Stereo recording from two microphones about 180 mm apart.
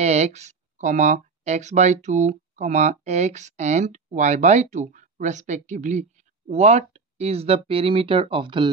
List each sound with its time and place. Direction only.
0.0 s speech: 40° right (ahead or behind)